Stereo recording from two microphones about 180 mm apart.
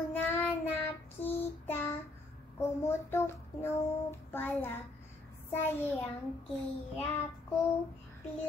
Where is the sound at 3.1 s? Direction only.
15° left (ahead or behind).